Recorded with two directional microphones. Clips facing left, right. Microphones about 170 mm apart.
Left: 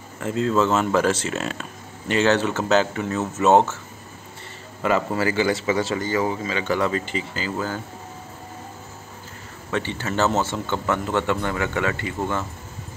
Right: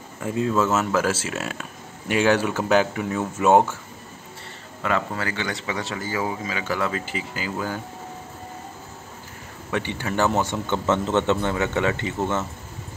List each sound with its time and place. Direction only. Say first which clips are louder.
0.2 s speech: left 1 dB; 10° right (ahead or behind)
4.8 s speech: left 4 dB; 5° left (ahead or behind); by 7.8 s 10° right (ahead or behind)
9.7 s speech: even; 15° right (ahead or behind)